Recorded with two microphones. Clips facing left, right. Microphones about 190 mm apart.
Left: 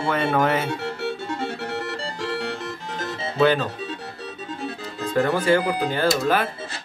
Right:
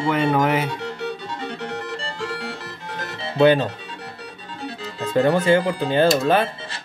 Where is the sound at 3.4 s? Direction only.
25° right (ahead or behind).